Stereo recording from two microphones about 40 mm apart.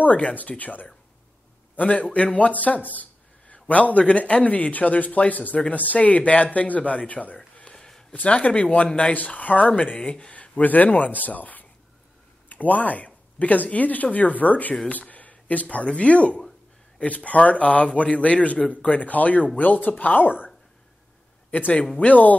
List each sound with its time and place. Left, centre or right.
0.0 s speech: left
7.7 s a sound: centre
8.1 s speech: left
9.1 s speech: left
10.3 s speech: left
21.5 s a man's voice: left